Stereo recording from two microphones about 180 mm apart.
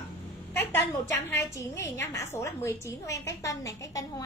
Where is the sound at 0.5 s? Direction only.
10° left (ahead or behind).